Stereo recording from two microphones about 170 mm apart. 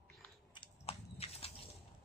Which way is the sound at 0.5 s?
30° left (ahead or behind).